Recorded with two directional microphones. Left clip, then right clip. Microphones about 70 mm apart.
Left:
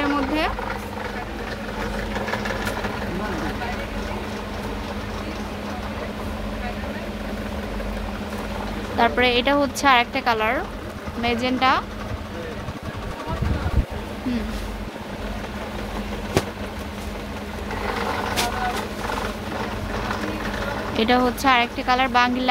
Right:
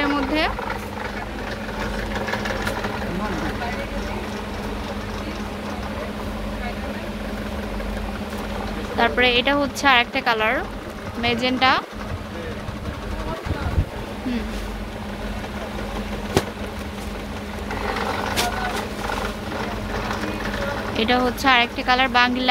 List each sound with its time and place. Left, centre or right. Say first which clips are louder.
0.0 s a sound: right 1 dB; centre
2.3 s vehicle: right 1 dB; left
8.9 s speech: right 1 dB; left
11.1 s a woman's voice: right 2 dB; centre
20.9 s a sound: left 1 dB; left
21.5 s a woman's voice: right 2 dB; centre